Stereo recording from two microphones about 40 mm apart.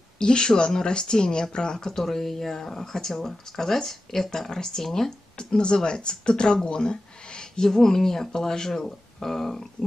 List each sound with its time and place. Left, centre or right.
0.2 s speech: left
2.0 s speech: centre
5.4 s speech: left